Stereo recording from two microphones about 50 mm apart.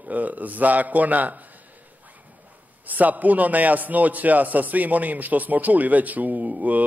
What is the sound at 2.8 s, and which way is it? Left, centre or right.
Speech, right.